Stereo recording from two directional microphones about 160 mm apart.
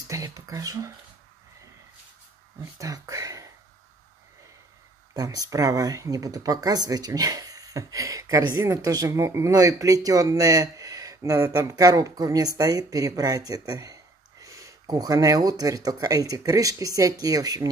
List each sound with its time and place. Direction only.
0.1 s speech: 20° right (ahead or behind)
2.8 s speech: 20° right (ahead or behind)
5.1 s speech: 20° right (ahead or behind)